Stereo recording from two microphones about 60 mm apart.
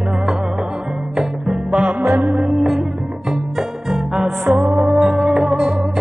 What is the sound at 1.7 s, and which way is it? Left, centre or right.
Music, centre.